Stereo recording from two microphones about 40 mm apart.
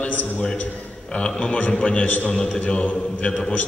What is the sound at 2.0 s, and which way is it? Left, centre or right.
Speech, left.